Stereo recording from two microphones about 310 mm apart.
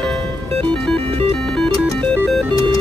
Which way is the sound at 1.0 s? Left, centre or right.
Centre.